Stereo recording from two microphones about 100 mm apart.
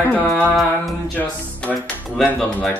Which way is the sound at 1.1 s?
15° left (ahead or behind).